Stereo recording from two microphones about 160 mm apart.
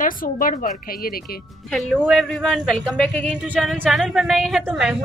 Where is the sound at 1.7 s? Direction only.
Centre (ahead or behind).